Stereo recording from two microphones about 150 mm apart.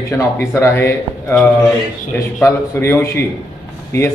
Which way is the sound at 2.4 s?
15° left (ahead or behind).